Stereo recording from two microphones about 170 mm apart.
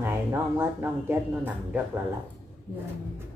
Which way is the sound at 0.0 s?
15° right (ahead or behind).